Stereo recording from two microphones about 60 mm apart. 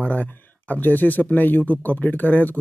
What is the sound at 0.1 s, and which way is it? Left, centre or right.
Speech, left.